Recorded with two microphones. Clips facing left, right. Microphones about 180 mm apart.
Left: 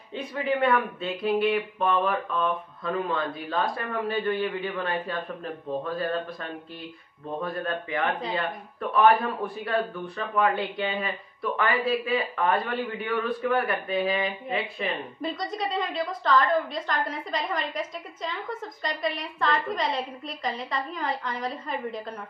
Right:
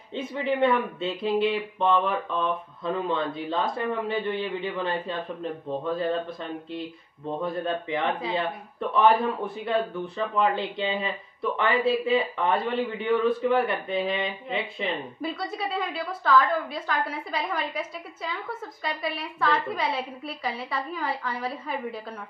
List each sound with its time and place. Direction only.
0.1 s speech: 25° right (ahead or behind)
7.4 s speech: 20° right (ahead or behind)
14.9 s a woman's voice: 5° right (ahead or behind)